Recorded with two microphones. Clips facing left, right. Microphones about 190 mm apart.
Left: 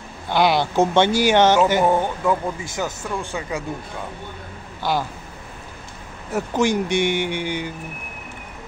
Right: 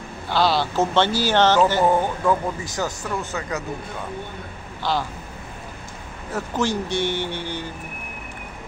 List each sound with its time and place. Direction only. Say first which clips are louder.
0.3 s speech: left 2 dB; 15° left (ahead or behind)
3.0 s speech: even; 30° left (ahead or behind)
3.3 s speech: left 1 dB; 10° left (ahead or behind)
6.3 s speech: left 4 dB; 15° left (ahead or behind)